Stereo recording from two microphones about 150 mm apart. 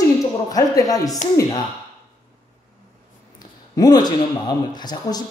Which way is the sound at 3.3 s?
25° left (ahead or behind).